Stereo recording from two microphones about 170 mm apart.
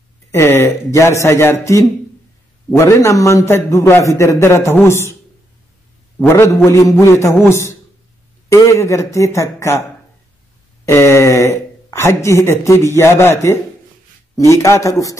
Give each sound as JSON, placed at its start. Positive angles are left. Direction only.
{"t": 0.3, "sound": "speech", "side_deg": 15}
{"t": 6.1, "sound": "speech", "side_deg": 15}
{"t": 10.9, "sound": "speech", "side_deg": 15}